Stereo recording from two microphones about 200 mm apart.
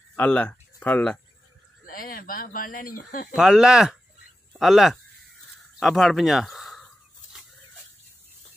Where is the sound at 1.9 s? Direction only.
45° left (ahead or behind).